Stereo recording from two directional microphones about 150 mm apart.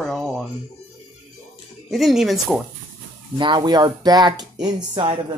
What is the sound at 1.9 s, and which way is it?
Speech, centre (ahead or behind).